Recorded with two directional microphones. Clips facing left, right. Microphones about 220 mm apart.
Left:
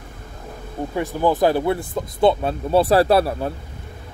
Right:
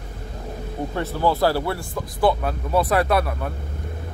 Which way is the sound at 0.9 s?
15° left (ahead or behind).